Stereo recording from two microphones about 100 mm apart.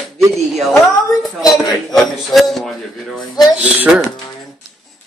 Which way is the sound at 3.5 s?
15° right (ahead or behind).